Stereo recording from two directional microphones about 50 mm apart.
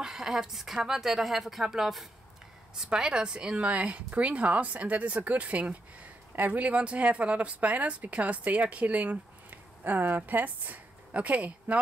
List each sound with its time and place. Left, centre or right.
0.0 s a woman's voice: centre; by 11.8 s right